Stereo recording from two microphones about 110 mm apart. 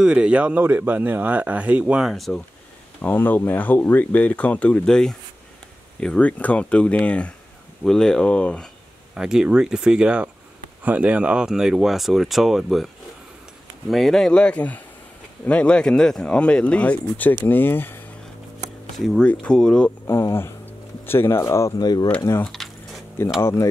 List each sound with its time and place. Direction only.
0.0 s speech: 10° right (ahead or behind)
3.0 s speech: 15° left (ahead or behind)
9.1 s speech: 5° right (ahead or behind); by 18.0 s 20° left (ahead or behind)
18.9 s speech: centre (ahead or behind)
20.1 s speech: 25° left (ahead or behind)
21.7 s speech: 40° left (ahead or behind)
22.4 s speech: centre (ahead or behind)
23.4 s speech: 25° left (ahead or behind)